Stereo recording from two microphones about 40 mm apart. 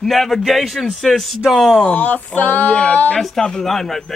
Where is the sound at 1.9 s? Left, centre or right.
Left.